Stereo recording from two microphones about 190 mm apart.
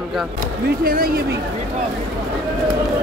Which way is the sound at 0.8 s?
50° right (ahead or behind).